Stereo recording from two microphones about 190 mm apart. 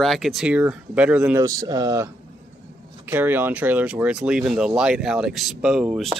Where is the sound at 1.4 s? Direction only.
20° right (ahead or behind).